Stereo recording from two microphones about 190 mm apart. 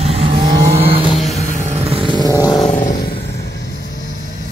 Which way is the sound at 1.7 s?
30° right (ahead or behind).